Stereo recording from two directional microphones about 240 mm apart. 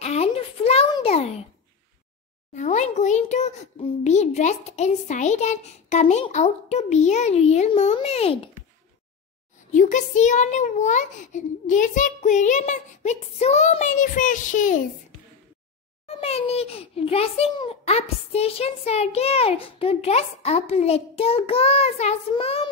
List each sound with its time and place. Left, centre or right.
0.0 s a sound: left
2.5 s a child's voice: left
9.7 s a child's voice: left
16.1 s a child's voice: left